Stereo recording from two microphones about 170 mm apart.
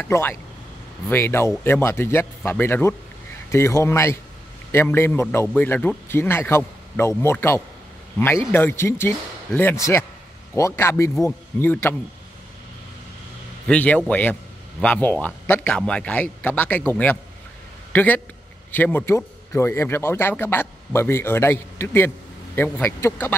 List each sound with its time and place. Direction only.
0.0 s a man's voice: 15° left (ahead or behind)
13.7 s a man's voice: 10° left (ahead or behind)